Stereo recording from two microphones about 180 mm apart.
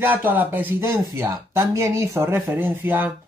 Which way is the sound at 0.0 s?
10° right (ahead or behind).